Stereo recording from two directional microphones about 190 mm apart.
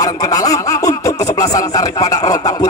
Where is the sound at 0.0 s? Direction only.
20° left (ahead or behind).